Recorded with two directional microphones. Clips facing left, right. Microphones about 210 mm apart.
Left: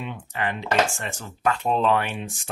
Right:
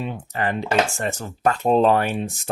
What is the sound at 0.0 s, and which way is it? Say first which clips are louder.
Speech: right 4 dB; 40° right (ahead or behind).